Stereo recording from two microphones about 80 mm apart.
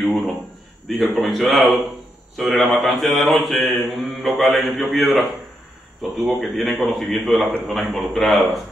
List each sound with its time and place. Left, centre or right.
0.8 s mantra: centre